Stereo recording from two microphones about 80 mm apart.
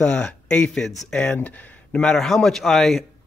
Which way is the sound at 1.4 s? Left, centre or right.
Centre.